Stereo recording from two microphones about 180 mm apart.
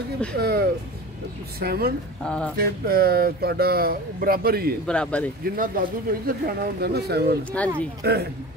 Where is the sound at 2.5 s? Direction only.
55° right (ahead or behind).